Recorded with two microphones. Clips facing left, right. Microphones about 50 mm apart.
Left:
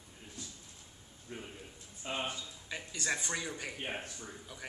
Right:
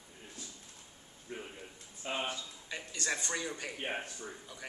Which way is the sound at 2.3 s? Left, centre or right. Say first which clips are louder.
Right 1 dB; centre.